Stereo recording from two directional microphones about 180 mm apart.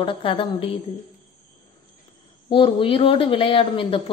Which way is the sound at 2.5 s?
30° left (ahead or behind).